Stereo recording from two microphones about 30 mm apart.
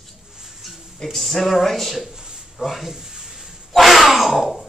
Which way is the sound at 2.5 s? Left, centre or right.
Centre.